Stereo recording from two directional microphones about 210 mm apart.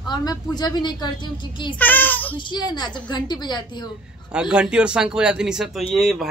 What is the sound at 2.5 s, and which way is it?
A woman's voice, 20° left (ahead or behind).